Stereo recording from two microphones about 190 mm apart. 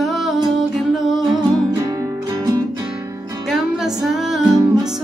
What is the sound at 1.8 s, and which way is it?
Music, 20° right (ahead or behind).